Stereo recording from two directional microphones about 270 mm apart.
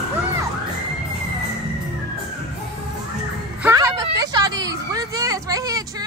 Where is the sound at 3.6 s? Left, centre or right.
Centre.